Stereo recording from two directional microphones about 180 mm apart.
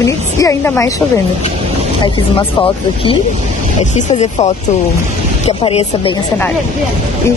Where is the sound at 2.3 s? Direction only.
30° left (ahead or behind).